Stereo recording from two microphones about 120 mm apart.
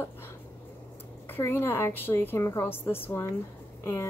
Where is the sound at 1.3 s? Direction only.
20° left (ahead or behind).